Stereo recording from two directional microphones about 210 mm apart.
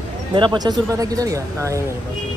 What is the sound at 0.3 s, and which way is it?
Speech, 20° right (ahead or behind).